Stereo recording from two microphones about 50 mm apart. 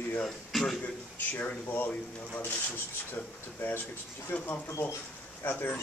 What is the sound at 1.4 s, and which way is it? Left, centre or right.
Speech, left.